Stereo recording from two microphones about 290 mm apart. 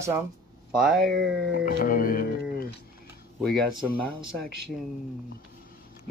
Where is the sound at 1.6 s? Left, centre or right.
Left.